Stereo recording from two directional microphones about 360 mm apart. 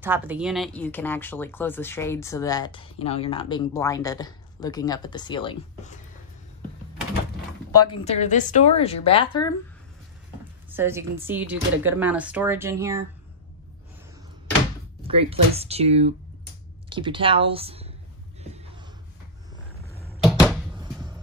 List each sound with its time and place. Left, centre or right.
0.0 s speech: centre
8.0 s speech: centre
10.7 s speech: centre
15.0 s speech: centre
18.4 s a sound: centre
20.0 s a sound: centre